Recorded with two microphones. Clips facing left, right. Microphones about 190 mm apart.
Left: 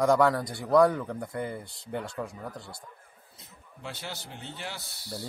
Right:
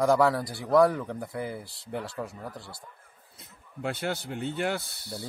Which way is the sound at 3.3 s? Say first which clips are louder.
Right 8 dB; 55° right (ahead or behind).